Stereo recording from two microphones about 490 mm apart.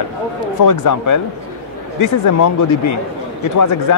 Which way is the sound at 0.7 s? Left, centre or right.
Left.